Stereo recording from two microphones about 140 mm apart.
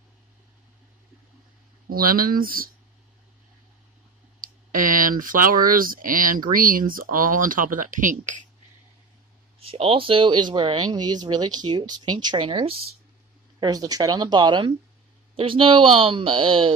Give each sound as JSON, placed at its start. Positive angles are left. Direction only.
{"t": 1.9, "sound": "speech", "side_deg": -90}
{"t": 4.4, "sound": "clicking", "side_deg": -80}
{"t": 5.2, "sound": "speech", "side_deg": -80}
{"t": 9.6, "sound": "speech", "side_deg": -45}
{"t": 13.6, "sound": "speech", "side_deg": -25}